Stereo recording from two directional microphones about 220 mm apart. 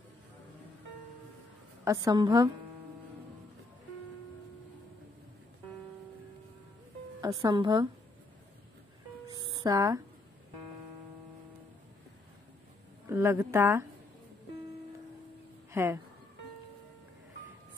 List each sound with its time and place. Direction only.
1.9 s speech: 15° right (ahead or behind)
7.2 s speech: 15° right (ahead or behind)
9.3 s music: 20° right (ahead or behind)
13.1 s speech: 10° right (ahead or behind)
15.7 s speech: 10° right (ahead or behind)